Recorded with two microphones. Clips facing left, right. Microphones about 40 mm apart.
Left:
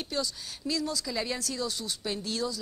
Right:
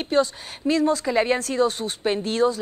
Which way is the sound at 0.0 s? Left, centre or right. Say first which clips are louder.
Right 12 dB; right.